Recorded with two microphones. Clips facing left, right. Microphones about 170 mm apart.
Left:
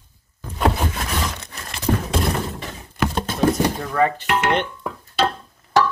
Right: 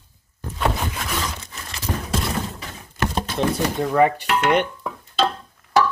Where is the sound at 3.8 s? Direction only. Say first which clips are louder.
Right 2 dB; 20° right (ahead or behind).